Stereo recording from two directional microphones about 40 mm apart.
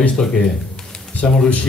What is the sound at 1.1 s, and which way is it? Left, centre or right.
Speech, left.